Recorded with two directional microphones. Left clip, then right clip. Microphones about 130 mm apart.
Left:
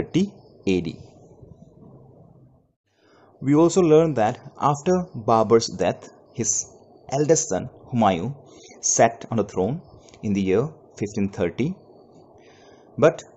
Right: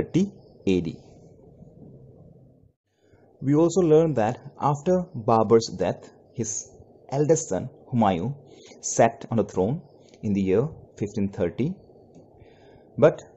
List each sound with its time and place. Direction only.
0.0 s speech: 15° right (ahead or behind)
3.4 s a man's voice: centre (ahead or behind)
12.9 s speech: 10° right (ahead or behind)